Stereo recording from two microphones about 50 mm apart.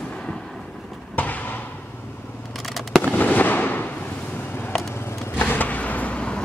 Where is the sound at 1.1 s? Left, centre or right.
Left.